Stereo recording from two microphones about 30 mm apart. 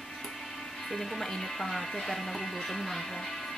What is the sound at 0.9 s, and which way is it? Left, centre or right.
Speech, centre.